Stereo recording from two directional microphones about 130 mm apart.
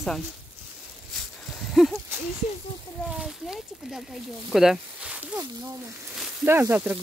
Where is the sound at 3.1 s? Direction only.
5° right (ahead or behind).